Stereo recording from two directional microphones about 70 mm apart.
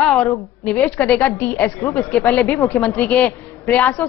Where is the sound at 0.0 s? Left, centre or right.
Centre.